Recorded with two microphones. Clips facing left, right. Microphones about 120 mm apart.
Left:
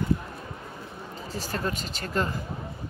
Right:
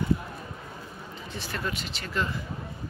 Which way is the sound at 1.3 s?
40° left (ahead or behind).